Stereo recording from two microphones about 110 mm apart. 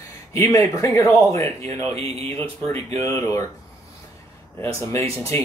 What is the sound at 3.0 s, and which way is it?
Speech, 25° left (ahead or behind).